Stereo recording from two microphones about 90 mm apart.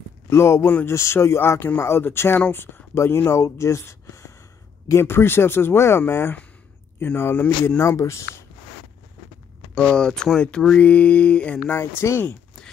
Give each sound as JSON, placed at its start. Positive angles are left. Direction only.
{"t": 0.3, "sound": "speech", "side_deg": 30}
{"t": 9.8, "sound": "speech", "side_deg": 10}
{"t": 11.7, "sound": "speech", "side_deg": 30}